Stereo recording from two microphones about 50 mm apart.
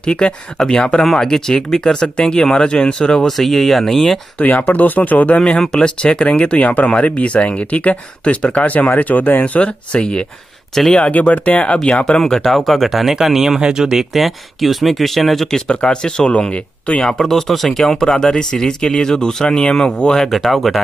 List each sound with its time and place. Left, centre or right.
0.0 s speech: centre
3.3 s speech: centre
4.4 s speech: left
5.3 s speech: centre
10.7 s speech: centre
11.1 s speech: left
12.2 s speech: centre
15.7 s speech: centre
17.2 s speech: centre
20.2 s speech: centre